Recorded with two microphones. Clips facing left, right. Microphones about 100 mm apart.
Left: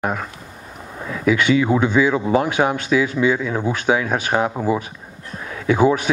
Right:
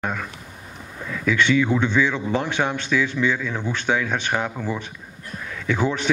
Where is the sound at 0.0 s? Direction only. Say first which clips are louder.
Left 4 dB; 40° left (ahead or behind).